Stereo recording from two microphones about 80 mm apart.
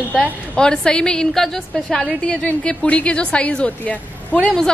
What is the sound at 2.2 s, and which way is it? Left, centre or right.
A woman's voice, centre.